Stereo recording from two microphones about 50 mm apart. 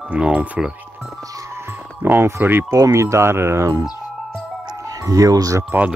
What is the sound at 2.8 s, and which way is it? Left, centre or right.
Speech, right.